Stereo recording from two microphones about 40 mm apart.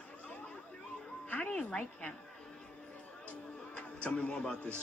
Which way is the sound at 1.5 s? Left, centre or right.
Left.